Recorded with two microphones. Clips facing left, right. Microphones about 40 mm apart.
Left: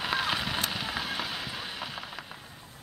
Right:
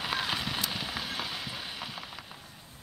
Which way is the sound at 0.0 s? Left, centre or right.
Centre.